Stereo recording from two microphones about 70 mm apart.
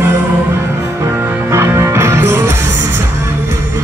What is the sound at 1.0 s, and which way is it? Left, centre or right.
Music, right.